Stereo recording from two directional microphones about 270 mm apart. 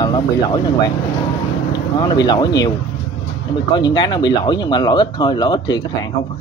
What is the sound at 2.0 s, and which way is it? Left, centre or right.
Speech, centre.